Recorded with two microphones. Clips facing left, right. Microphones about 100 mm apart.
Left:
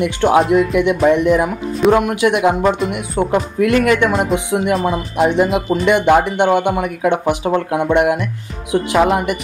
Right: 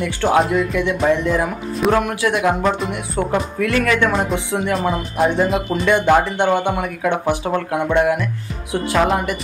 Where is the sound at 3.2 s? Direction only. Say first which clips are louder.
Left 3 dB; 15° left (ahead or behind).